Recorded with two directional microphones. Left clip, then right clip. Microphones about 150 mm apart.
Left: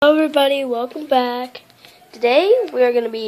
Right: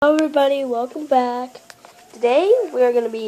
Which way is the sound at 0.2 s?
5° left (ahead or behind).